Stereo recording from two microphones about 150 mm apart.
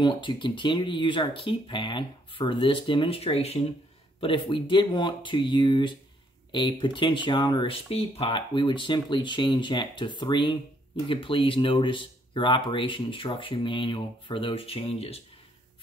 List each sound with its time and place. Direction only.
0.0 s speech: 30° left (ahead or behind)